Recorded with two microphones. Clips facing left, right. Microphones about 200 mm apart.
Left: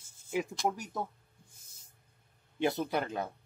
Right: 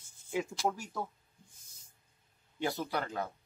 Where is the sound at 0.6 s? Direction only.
20° left (ahead or behind).